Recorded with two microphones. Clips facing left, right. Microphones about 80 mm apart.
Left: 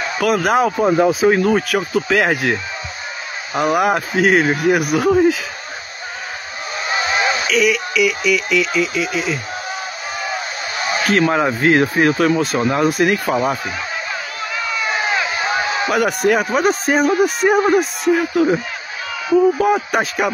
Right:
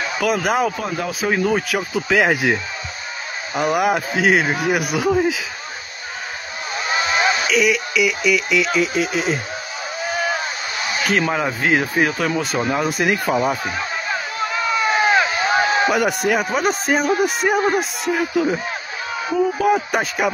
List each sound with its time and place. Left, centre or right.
0.2 s speech: centre
0.8 s speech: left
1.2 s speech: centre
6.9 s a sound: left
7.5 s speech: centre
8.6 s speech: right
10.8 s a sound: left
11.2 s speech: centre
13.7 s a sound: right
15.9 s a man's voice: centre